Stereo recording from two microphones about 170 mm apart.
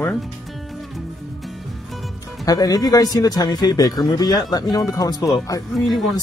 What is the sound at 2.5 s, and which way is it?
Speech, 20° left (ahead or behind).